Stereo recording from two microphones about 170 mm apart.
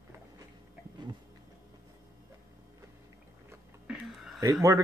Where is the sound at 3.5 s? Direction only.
5° right (ahead or behind).